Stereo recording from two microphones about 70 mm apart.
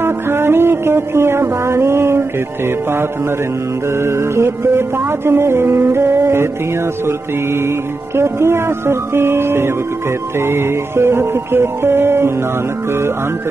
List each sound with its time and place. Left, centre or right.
0.0 s music: right